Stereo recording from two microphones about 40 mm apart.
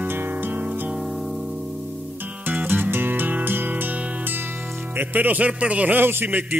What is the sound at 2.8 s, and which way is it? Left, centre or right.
Music, right.